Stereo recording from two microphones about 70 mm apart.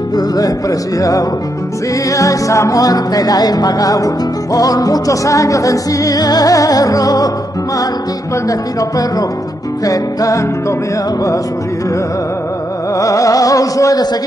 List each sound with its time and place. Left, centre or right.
0.1 s music: left
9.8 s music: left
12.9 s music: left